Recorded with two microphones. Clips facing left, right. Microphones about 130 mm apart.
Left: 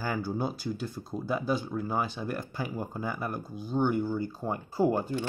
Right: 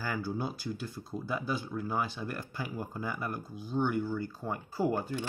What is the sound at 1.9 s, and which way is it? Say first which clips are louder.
Speech: left 2 dB; 20° left (ahead or behind).